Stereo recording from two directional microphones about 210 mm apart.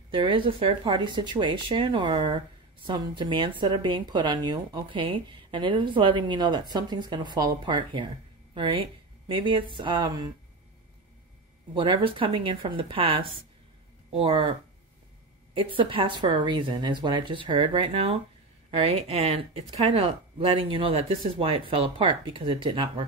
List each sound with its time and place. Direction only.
0.1 s speech: 25° right (ahead or behind)
11.7 s speech: 25° right (ahead or behind)
15.5 s speech: 25° right (ahead or behind)